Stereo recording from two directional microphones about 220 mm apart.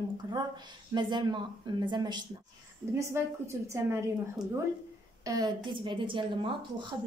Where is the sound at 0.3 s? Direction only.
20° right (ahead or behind).